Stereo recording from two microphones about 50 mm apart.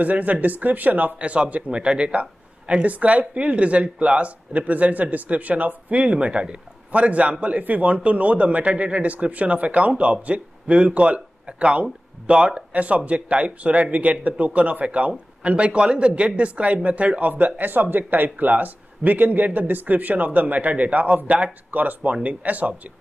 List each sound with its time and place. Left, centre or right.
0.0 s speech: right